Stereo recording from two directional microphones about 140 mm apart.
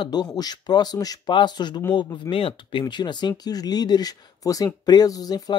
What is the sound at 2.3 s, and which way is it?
Speech, 40° left (ahead or behind).